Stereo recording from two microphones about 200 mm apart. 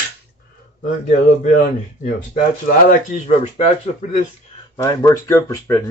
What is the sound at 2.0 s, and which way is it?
Speech, 40° left (ahead or behind).